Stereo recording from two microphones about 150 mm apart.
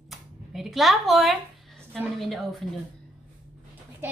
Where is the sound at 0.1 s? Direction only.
Centre (ahead or behind).